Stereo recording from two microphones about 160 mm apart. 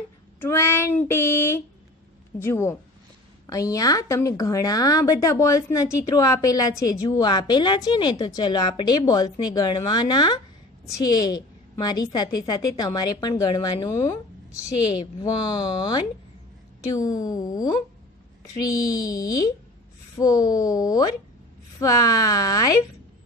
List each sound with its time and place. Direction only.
0.4 s child singing: 15° left (ahead or behind)
3.4 s a woman's voice: 20° left (ahead or behind)
15.2 s a woman's voice: 25° left (ahead or behind)